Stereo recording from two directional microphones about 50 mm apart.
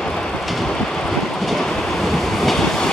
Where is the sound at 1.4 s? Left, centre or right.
Centre.